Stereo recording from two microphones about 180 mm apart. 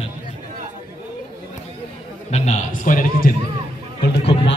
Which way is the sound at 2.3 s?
40° left (ahead or behind).